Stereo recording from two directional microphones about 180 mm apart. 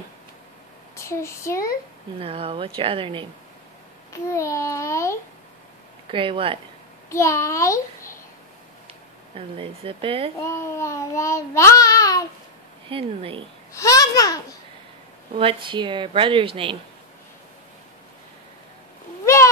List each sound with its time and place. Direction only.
0.9 s a child's voice: 15° left (ahead or behind)
2.1 s speech: 30° right (ahead or behind)
4.1 s a child's voice: 15° left (ahead or behind)
6.0 s a woman's voice: 30° right (ahead or behind)
7.1 s a child's voice: 15° left (ahead or behind)
9.6 s speech: 30° right (ahead or behind)
10.4 s child singing: 15° left (ahead or behind)
12.9 s a woman's voice: 30° right (ahead or behind)
13.7 s a child's voice: 20° left (ahead or behind)
15.3 s a woman's voice: 30° right (ahead or behind)
19.2 s a sound: 15° left (ahead or behind)